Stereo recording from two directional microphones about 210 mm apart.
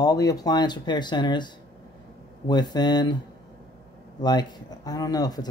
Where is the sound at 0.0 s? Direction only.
15° left (ahead or behind).